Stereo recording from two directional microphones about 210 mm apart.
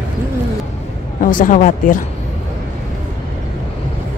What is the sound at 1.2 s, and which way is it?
Speech, 40° left (ahead or behind).